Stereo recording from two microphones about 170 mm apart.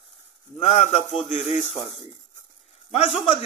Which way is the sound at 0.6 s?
40° left (ahead or behind).